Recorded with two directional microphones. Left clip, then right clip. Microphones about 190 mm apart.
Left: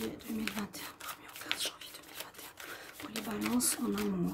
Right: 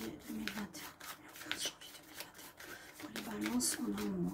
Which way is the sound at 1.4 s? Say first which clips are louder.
Left 5 dB; 30° left (ahead or behind).